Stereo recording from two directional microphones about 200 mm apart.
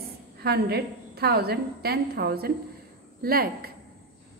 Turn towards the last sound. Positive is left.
turn(degrees=-50)  # may be behind; listen again after turning